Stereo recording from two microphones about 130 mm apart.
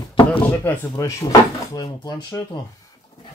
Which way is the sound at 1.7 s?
30° left (ahead or behind).